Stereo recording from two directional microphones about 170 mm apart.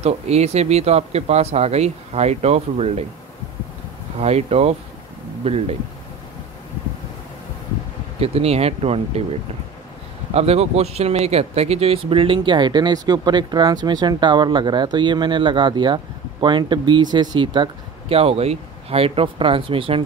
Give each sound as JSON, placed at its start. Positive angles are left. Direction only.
{"t": 0.0, "sound": "speech", "side_deg": -40}
{"t": 4.2, "sound": "speech", "side_deg": -40}
{"t": 8.2, "sound": "speech", "side_deg": -35}
{"t": 10.3, "sound": "speech", "side_deg": -40}